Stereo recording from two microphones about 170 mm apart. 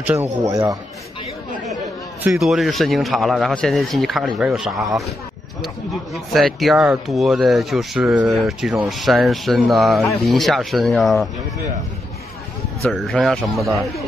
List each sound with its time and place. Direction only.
0.4 s a man's voice: 20° right (ahead or behind)
2.2 s speech: 5° right (ahead or behind)
6.3 s speech: centre (ahead or behind)
12.8 s speech: centre (ahead or behind)